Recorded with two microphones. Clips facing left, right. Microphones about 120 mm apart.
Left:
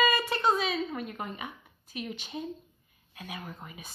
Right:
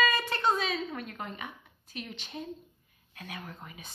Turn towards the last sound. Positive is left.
turn(degrees=5)  # may be behind; listen again after turning